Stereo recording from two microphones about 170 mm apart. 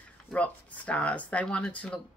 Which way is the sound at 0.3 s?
10° left (ahead or behind).